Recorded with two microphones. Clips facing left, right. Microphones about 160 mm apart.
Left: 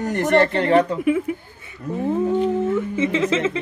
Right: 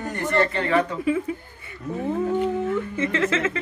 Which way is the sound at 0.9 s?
10° left (ahead or behind).